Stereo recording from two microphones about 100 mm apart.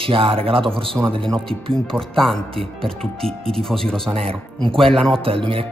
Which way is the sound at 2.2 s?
5° left (ahead or behind).